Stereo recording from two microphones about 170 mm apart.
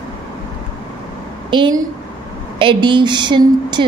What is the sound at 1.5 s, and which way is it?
A woman's voice, 25° right (ahead or behind).